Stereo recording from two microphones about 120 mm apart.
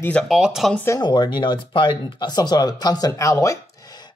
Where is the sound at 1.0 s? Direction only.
40° left (ahead or behind).